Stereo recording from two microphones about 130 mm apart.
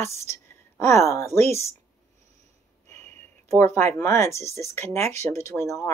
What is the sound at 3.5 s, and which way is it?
Speech, 20° left (ahead or behind).